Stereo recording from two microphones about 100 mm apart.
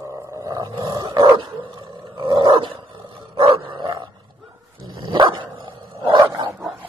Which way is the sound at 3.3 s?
65° right (ahead or behind).